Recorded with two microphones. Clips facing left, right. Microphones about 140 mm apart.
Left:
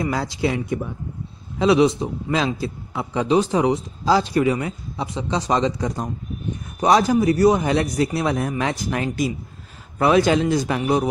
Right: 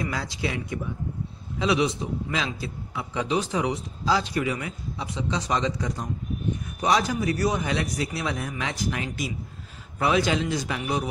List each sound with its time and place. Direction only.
0.0 s a man's voice: 35° left (ahead or behind)